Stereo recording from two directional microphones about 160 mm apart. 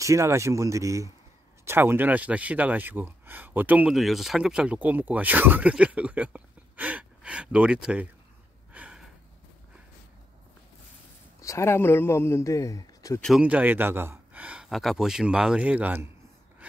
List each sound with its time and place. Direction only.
0.0 s speech: 20° right (ahead or behind)
8.7 s a sound: 5° right (ahead or behind)
11.4 s a man's voice: 15° left (ahead or behind)
13.2 s speech: 5° right (ahead or behind)